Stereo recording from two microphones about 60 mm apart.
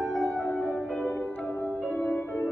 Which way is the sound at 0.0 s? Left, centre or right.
Centre.